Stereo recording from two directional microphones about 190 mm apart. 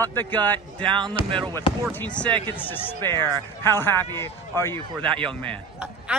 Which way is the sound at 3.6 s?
10° left (ahead or behind).